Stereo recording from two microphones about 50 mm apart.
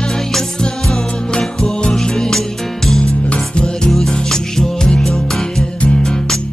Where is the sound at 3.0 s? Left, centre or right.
Centre.